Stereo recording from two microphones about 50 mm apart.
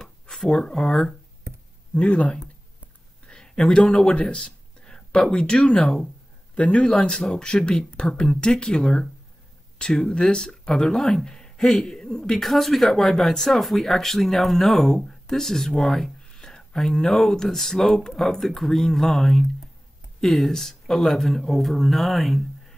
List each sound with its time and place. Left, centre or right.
0.0 s speech: centre
2.0 s speech: left
3.3 s speech: centre